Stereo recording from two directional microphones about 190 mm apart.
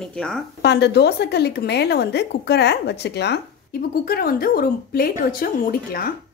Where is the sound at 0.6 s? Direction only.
60° left (ahead or behind).